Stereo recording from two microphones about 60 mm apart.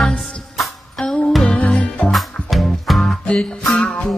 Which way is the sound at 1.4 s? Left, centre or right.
Left.